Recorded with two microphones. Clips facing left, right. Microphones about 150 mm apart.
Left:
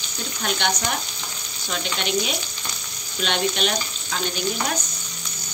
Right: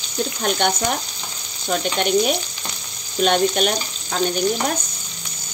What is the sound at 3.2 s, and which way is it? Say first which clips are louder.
Speech: right 6 dB; 45° right (ahead or behind).